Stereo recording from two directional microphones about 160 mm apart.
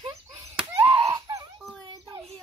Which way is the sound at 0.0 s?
40° right (ahead or behind).